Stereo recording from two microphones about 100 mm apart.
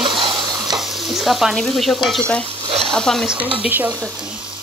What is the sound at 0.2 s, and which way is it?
Stir, 50° right (ahead or behind).